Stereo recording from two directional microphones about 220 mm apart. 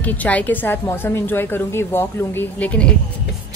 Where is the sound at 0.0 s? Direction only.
5° left (ahead or behind).